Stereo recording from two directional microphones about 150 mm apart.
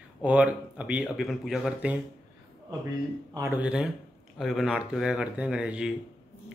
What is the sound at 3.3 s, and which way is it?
Speech, 20° right (ahead or behind).